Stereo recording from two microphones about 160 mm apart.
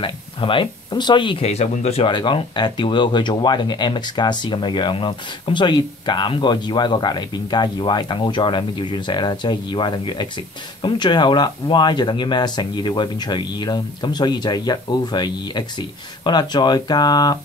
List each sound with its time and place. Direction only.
0.0 s speech: 30° left (ahead or behind)